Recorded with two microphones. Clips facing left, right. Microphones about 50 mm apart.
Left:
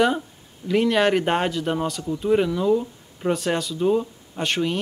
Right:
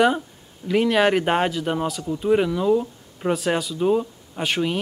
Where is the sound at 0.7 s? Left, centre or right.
Centre.